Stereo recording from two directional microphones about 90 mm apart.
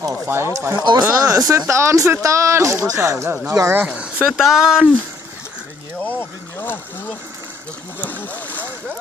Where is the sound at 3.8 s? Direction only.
15° right (ahead or behind).